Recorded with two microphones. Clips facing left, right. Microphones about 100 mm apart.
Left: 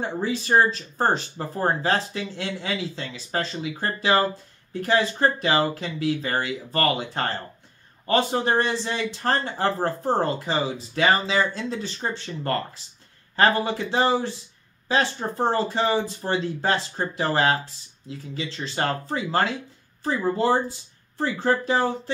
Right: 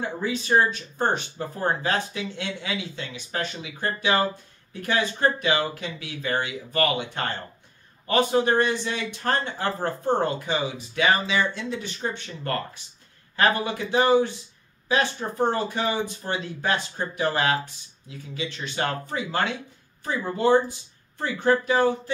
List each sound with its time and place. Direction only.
0.0 s speech: 35° left (ahead or behind)